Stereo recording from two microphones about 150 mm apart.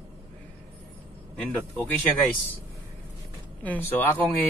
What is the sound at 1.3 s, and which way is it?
Speech, 5° left (ahead or behind).